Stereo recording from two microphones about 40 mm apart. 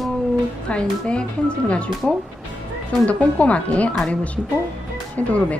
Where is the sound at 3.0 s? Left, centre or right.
Left.